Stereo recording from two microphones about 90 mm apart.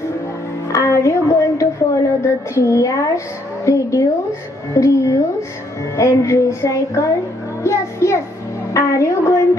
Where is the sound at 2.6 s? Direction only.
35° left (ahead or behind).